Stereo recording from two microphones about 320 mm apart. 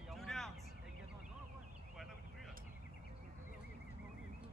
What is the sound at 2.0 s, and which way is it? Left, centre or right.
Vehicle, centre.